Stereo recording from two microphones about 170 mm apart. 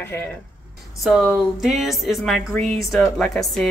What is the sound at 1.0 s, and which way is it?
A woman's voice, centre (ahead or behind).